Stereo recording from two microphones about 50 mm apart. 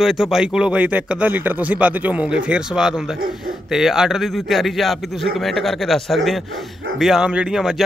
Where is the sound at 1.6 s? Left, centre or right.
Right.